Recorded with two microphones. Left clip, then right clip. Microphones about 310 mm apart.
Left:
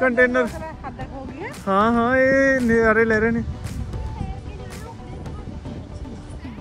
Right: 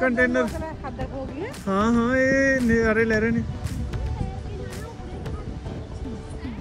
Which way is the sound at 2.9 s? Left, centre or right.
Left.